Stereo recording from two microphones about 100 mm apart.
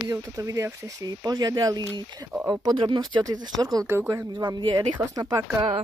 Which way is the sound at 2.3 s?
10° right (ahead or behind).